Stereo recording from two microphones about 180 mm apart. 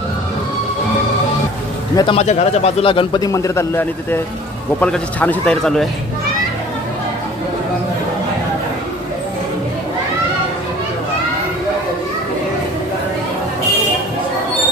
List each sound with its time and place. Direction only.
2.0 s a man's voice: 25° left (ahead or behind); by 5.9 s 5° left (ahead or behind)